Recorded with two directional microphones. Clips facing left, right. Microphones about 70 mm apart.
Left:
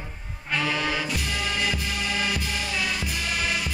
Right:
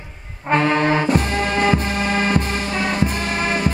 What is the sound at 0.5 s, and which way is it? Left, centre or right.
Music, right.